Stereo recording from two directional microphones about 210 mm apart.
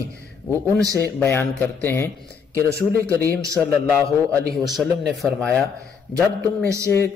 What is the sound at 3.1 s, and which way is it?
Speech, 15° right (ahead or behind).